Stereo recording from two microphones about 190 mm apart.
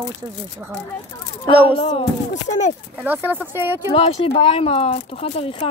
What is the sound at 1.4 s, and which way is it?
Speech, 25° left (ahead or behind).